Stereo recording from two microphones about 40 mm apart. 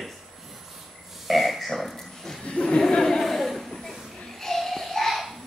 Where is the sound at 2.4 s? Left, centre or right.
Left.